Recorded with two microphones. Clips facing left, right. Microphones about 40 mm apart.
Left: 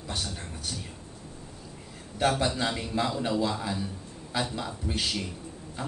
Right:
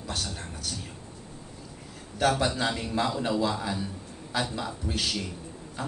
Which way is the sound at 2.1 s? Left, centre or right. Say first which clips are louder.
Right 1 dB; centre.